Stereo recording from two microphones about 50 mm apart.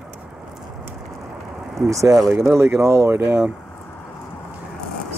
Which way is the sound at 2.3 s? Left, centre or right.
Right.